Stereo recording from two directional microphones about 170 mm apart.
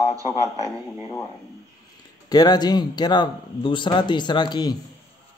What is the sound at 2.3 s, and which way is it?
Speech, 25° left (ahead or behind).